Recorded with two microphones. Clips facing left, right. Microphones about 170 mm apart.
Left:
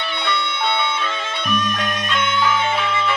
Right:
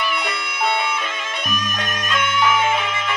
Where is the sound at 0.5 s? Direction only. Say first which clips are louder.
Even; 30° left (ahead or behind).